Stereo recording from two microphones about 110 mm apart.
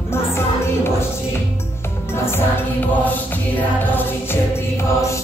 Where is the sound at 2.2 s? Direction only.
20° left (ahead or behind).